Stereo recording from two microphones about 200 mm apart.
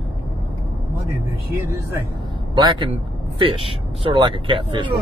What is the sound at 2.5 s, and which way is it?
Speech, 20° right (ahead or behind).